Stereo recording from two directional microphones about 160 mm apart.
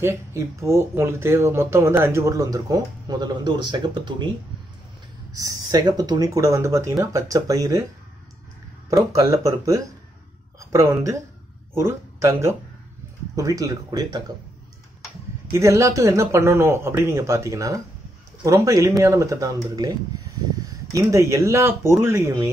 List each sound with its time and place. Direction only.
0.0 s speech: 15° right (ahead or behind)
5.3 s speech: 25° right (ahead or behind)
9.1 s speech: 20° right (ahead or behind)
15.5 s speech: 20° right (ahead or behind)